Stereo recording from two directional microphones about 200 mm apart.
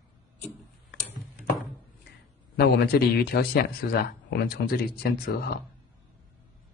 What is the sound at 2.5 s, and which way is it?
Speech, 50° left (ahead or behind).